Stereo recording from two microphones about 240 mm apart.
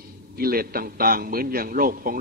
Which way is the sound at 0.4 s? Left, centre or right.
Right.